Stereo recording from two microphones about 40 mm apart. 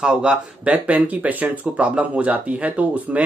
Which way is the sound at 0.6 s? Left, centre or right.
Right.